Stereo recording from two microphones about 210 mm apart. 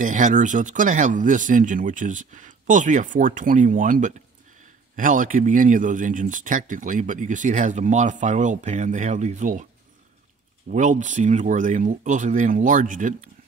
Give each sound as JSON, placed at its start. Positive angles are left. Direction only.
{"t": 0.0, "sound": "a man's voice", "side_deg": -35}
{"t": 10.7, "sound": "a man's voice", "side_deg": -35}